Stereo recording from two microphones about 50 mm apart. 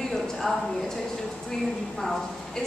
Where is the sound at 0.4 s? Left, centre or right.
Centre.